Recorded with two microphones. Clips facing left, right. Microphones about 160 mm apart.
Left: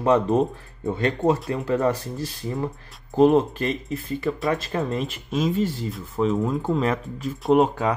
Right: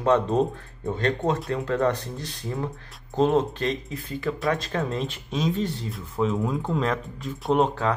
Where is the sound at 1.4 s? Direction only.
Centre (ahead or behind).